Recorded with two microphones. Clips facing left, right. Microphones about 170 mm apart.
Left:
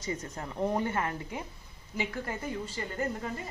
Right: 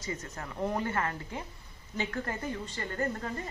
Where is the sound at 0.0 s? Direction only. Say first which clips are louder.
Left 2 dB; 30° left (ahead or behind).